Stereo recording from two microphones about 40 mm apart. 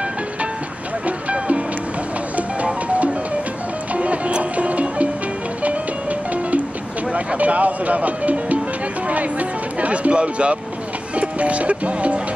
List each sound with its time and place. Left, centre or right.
1.0 s music: right
7.1 s vehicle: right
7.3 s speech: right